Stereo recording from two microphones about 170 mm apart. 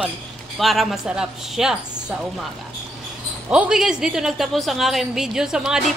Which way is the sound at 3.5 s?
5° right (ahead or behind).